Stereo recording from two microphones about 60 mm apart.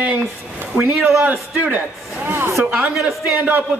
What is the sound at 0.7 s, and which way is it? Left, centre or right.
Speech, right.